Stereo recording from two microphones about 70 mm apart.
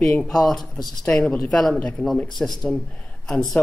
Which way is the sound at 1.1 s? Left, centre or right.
Centre.